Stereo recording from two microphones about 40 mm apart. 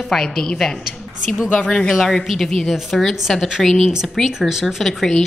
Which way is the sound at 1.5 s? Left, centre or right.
Left.